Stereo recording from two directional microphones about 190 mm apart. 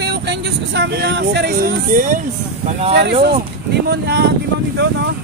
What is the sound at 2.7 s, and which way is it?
Speech, 35° right (ahead or behind).